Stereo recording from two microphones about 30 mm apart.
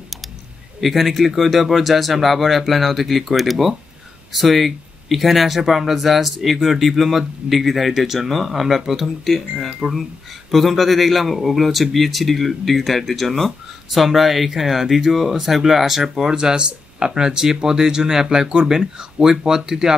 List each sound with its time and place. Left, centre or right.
0.7 s speech: centre